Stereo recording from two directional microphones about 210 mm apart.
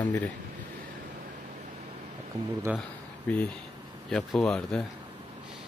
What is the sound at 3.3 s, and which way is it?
Speech, 5° left (ahead or behind).